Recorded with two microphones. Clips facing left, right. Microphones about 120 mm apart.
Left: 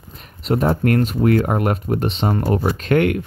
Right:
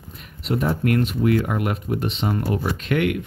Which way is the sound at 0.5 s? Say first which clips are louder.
Left 4 dB; 40° left (ahead or behind).